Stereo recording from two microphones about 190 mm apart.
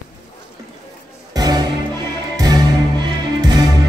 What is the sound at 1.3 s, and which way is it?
Music, 20° right (ahead or behind).